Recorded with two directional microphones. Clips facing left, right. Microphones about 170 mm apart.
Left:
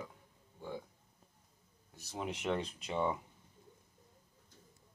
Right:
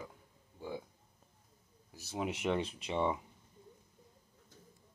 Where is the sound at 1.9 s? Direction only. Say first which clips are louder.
Right 3 dB; 5° right (ahead or behind).